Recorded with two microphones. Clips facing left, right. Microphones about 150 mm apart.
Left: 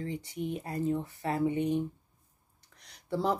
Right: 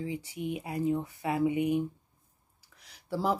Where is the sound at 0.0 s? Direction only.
10° right (ahead or behind).